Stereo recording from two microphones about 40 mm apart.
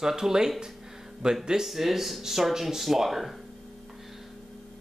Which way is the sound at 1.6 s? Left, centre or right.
Centre.